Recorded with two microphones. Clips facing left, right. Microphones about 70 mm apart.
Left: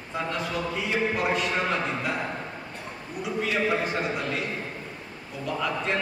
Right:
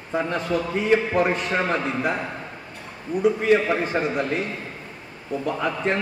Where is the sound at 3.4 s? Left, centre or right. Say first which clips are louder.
Right 6 dB; right.